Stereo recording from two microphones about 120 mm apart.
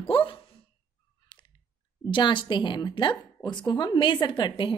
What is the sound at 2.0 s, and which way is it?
A woman's voice, 40° left (ahead or behind).